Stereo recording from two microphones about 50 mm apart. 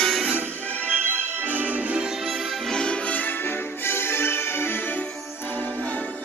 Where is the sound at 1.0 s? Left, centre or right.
Right.